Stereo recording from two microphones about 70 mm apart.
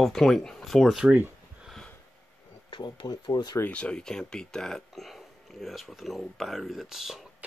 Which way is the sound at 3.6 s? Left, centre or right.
Centre.